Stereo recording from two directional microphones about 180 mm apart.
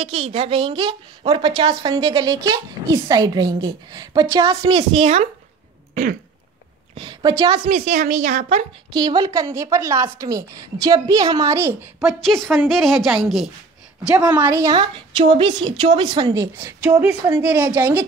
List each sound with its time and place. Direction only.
0.0 s a woman's voice: 35° right (ahead or behind)
5.0 s a woman's voice: 40° right (ahead or behind)
7.0 s a woman's voice: 25° right (ahead or behind)
8.9 s a woman's voice: 25° right (ahead or behind); by 13.5 s centre (ahead or behind)
14.3 s a woman's voice: 10° right (ahead or behind)